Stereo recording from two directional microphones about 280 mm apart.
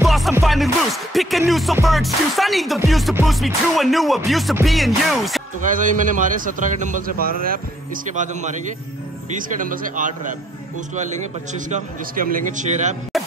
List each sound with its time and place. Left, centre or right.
0.0 s music: centre
5.9 s a man's voice: right
9.6 s a man's voice: right
11.7 s a man's voice: right